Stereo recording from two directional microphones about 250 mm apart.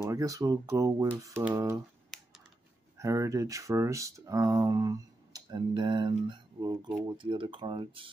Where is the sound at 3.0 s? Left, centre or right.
Centre.